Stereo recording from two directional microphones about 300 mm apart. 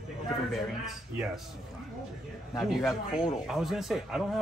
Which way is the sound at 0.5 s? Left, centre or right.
Centre.